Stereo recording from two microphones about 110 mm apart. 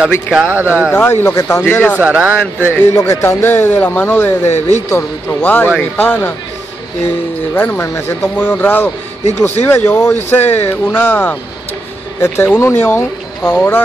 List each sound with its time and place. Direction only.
0.0 s speech: 5° right (ahead or behind)
0.5 s speech: 20° right (ahead or behind)
0.9 s speech: 20° left (ahead or behind)
2.0 s speech: 15° right (ahead or behind)
2.7 s speech: 25° left (ahead or behind)
7.5 s speech: 20° left (ahead or behind)